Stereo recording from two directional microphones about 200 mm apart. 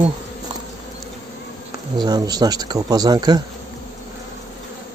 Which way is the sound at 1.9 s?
20° right (ahead or behind).